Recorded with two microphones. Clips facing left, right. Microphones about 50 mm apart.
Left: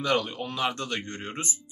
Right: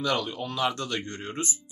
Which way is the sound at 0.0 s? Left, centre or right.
Centre.